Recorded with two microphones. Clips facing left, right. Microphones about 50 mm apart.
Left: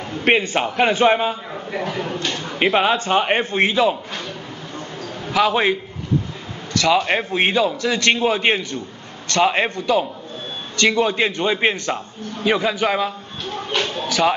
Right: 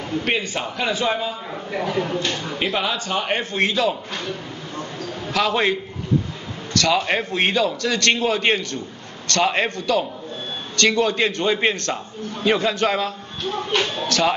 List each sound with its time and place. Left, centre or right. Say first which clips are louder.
0.2 s a man's voice: left 9 dB; left
1.7 s speech: right 2 dB; centre
2.6 s a man's voice: left 7 dB; left
5.3 s a man's voice: left 3 dB; centre